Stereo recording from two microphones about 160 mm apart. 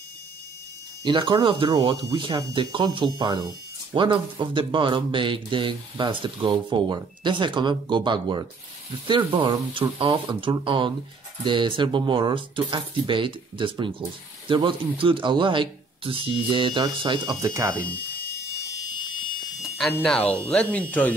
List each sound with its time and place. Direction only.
1.0 s speech: 30° right (ahead or behind)
17.7 s electric shaver: 10° left (ahead or behind)
19.9 s speech: 10° left (ahead or behind)